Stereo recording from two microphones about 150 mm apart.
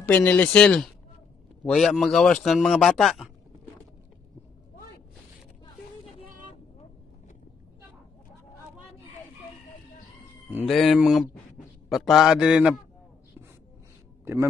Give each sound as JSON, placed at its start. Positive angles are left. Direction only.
{"t": 0.0, "sound": "speech", "side_deg": 10}
{"t": 10.7, "sound": "speech", "side_deg": 0}